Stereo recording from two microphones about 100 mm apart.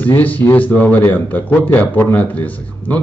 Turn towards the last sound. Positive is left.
turn(degrees=15)  # may be behind; listen again after turning